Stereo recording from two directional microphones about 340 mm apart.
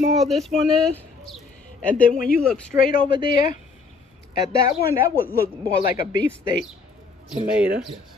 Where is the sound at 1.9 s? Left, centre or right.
Left.